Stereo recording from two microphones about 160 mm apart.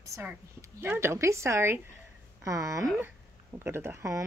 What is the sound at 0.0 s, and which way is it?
Speech, 15° right (ahead or behind).